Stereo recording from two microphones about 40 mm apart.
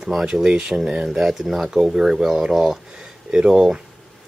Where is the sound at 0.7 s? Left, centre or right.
Centre.